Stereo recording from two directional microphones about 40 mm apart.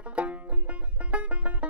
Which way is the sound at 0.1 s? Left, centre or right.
Right.